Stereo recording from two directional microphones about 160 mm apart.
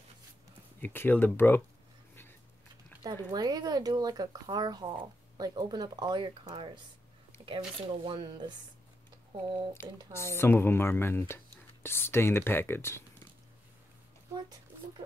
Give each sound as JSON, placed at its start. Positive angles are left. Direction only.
{"t": 0.7, "sound": "speech", "side_deg": 10}
{"t": 3.0, "sound": "speech", "side_deg": -25}
{"t": 10.1, "sound": "speech", "side_deg": 15}